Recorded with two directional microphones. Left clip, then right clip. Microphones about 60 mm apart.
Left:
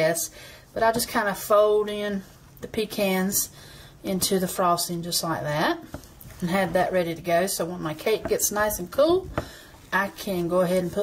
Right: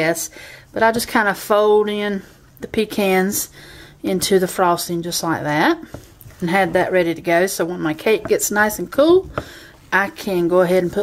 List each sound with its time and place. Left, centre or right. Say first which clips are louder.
0.7 s speech: right 7 dB; right